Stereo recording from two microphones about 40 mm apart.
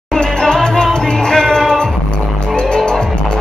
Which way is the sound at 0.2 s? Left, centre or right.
Centre.